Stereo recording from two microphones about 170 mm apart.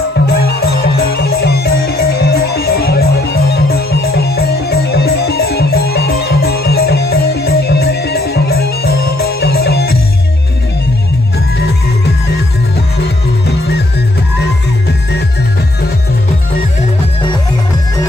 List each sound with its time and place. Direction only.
0.5 s music: 65° left (ahead or behind)